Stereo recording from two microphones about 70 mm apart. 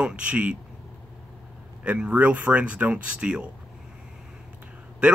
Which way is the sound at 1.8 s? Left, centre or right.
Right.